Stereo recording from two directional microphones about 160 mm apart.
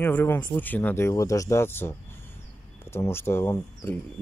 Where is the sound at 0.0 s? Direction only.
10° left (ahead or behind).